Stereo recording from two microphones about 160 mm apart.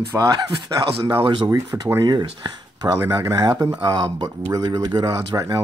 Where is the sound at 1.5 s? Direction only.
20° right (ahead or behind).